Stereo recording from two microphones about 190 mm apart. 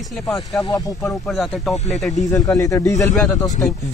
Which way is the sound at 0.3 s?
Centre (ahead or behind).